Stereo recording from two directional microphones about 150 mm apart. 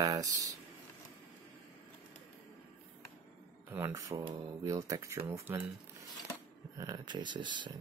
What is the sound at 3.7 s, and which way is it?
Speech, 15° right (ahead or behind).